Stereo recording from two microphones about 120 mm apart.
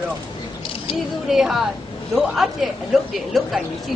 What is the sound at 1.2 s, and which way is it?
Speech, 5° right (ahead or behind).